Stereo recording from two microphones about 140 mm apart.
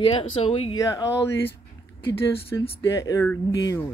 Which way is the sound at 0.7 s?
25° left (ahead or behind).